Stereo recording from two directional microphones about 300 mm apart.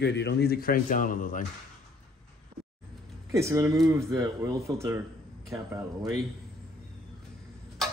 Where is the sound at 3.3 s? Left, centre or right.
Centre.